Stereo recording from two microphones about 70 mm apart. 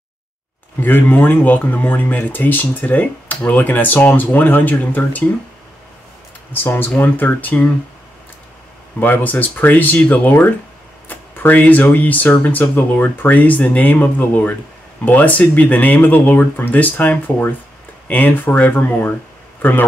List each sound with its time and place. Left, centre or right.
0.8 s speech: left
6.5 s speech: left
9.0 s speech: left